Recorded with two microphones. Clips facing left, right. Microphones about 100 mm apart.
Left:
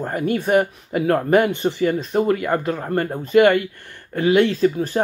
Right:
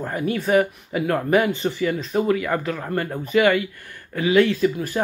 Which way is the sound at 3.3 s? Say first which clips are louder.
Left 4 dB; 50° left (ahead or behind).